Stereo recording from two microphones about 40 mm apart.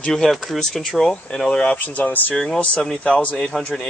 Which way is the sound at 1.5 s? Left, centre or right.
Left.